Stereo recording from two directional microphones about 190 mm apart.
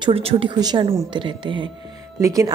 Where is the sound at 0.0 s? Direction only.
30° right (ahead or behind).